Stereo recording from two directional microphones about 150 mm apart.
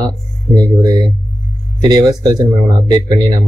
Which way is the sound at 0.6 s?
25° right (ahead or behind).